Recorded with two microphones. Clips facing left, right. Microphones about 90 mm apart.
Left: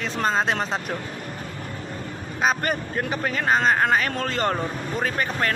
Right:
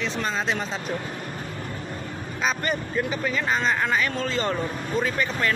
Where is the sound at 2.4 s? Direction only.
50° left (ahead or behind).